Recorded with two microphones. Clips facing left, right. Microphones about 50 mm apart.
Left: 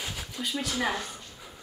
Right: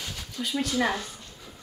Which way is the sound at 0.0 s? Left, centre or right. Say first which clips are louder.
Even; centre.